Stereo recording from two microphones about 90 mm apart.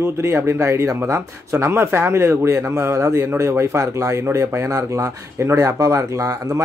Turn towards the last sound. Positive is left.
turn(degrees=-35)  # may be behind; listen again after turning